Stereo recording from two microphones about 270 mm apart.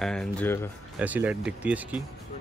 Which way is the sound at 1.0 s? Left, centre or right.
Centre.